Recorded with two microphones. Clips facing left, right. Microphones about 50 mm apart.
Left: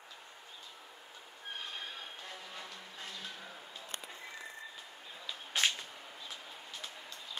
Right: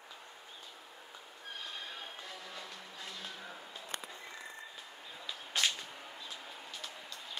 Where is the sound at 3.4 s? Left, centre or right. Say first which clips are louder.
Right 1 dB; centre.